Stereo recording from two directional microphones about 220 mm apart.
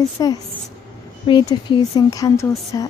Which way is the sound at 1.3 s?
20° left (ahead or behind).